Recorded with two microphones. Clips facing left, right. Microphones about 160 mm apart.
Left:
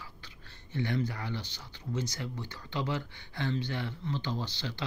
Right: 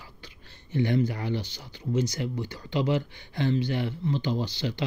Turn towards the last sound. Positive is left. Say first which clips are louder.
# right 7 dB
turn(degrees=-15)  # may be behind; listen again after turning